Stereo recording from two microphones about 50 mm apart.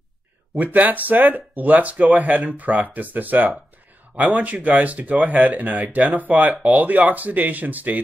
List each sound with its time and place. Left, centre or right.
0.6 s speech: right